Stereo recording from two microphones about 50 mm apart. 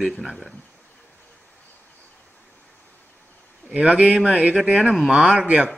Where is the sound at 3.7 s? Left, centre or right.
Right.